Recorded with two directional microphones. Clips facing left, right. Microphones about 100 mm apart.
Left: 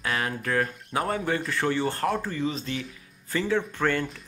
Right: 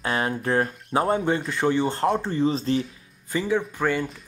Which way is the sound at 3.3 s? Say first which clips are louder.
Right 2 dB; 15° right (ahead or behind).